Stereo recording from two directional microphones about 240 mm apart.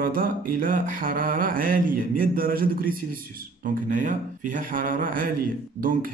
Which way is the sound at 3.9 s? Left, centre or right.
Right.